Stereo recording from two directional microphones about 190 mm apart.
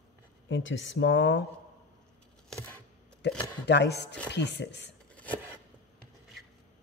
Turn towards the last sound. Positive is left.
turn(degrees=5)  # may be behind; listen again after turning